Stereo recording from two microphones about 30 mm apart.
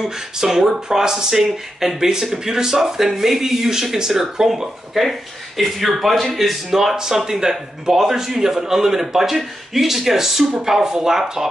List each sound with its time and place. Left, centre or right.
0.0 s a man's voice: centre